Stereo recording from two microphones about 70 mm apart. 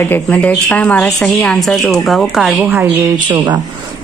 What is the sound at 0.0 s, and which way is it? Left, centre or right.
A woman's voice, left.